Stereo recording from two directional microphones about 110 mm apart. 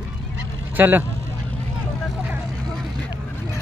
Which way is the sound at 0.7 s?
15° right (ahead or behind).